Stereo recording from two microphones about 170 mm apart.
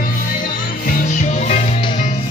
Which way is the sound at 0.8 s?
50° left (ahead or behind).